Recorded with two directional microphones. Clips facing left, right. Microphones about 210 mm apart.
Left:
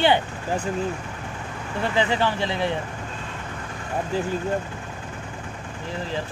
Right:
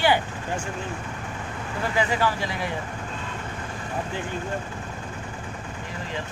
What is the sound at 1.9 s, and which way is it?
Speech, 25° left (ahead or behind).